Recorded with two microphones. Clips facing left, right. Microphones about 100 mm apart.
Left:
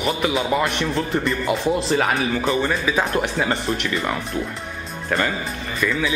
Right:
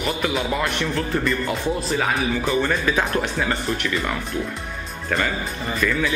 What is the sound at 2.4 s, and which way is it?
Speech, centre (ahead or behind).